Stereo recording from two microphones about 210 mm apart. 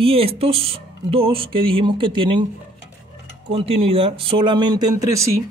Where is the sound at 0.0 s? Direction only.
25° right (ahead or behind).